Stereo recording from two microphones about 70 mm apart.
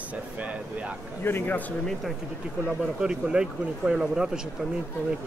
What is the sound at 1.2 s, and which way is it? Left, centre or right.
Speech, left.